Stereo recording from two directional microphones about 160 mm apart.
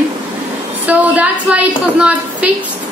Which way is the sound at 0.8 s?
10° right (ahead or behind).